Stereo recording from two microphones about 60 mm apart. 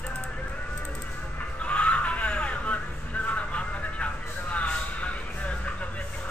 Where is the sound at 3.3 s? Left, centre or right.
Centre.